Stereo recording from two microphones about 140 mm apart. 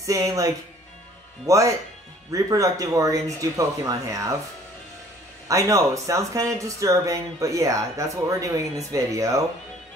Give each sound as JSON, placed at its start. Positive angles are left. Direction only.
{"t": 0.0, "sound": "speech", "side_deg": -25}
{"t": 5.5, "sound": "speech", "side_deg": -25}